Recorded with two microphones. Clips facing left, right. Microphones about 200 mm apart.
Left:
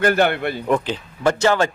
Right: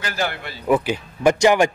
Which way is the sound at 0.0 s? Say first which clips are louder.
Left 9 dB; 60° left (ahead or behind).